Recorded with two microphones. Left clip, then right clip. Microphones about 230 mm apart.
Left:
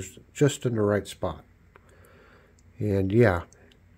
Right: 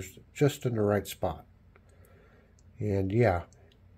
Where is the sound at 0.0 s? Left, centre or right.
Left.